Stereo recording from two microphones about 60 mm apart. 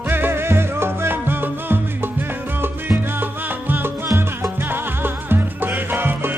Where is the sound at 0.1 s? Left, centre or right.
Right.